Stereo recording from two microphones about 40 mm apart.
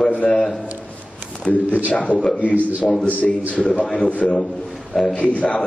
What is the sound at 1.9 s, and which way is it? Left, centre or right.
Speech, left.